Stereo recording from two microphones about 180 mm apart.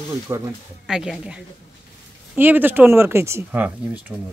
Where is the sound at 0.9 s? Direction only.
5° right (ahead or behind).